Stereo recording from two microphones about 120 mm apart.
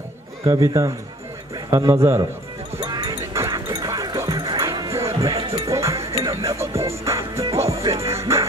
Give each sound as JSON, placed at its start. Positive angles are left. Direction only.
{"t": 0.5, "sound": "a man's voice", "side_deg": -25}
{"t": 2.8, "sound": "music", "side_deg": -35}
{"t": 3.3, "sound": "music", "side_deg": -25}